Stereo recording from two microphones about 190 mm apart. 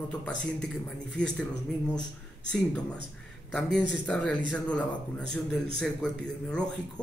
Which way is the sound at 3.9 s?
5° left (ahead or behind).